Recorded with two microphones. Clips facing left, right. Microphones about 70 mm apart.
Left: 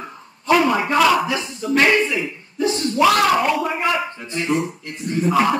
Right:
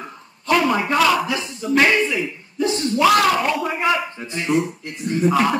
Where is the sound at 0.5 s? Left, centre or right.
Centre.